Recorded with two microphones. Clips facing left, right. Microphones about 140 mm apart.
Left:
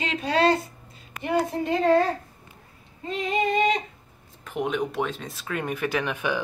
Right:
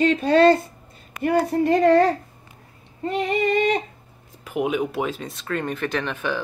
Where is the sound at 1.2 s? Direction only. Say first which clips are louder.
Right 5 dB; 65° right (ahead or behind).